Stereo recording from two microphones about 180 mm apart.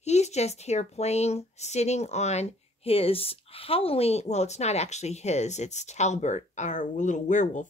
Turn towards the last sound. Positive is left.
turn(degrees=45)  # may be behind; listen again after turning